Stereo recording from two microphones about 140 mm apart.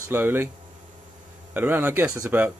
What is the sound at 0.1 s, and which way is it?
Speech, 15° right (ahead or behind).